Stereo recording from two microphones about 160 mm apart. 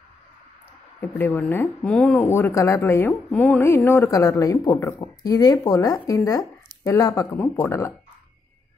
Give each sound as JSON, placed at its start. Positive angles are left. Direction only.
{"t": 1.0, "sound": "speech", "side_deg": 10}